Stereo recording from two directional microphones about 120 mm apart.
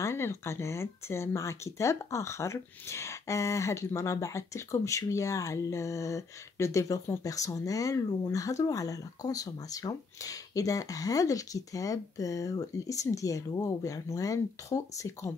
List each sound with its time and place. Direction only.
0.0 s speech: 20° left (ahead or behind)